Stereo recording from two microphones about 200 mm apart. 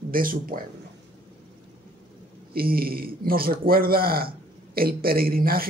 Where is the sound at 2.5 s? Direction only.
50° right (ahead or behind).